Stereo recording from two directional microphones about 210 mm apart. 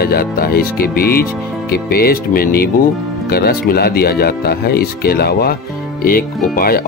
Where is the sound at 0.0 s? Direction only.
45° left (ahead or behind).